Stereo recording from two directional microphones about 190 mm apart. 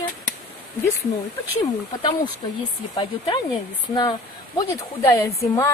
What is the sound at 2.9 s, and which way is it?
Speech, 25° left (ahead or behind).